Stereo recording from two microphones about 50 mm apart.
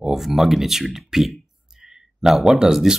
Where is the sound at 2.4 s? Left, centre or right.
Centre.